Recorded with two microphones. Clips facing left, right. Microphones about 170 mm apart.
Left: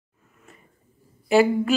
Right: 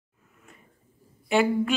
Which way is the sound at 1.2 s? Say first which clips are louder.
Left 4 dB; 5° left (ahead or behind).